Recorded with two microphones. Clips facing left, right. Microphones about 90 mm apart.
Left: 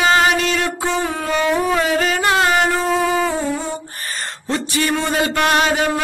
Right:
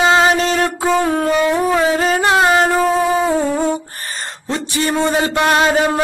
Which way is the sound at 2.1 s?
35° right (ahead or behind).